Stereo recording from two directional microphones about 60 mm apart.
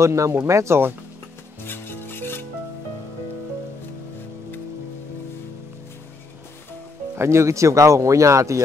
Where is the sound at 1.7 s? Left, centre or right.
Left.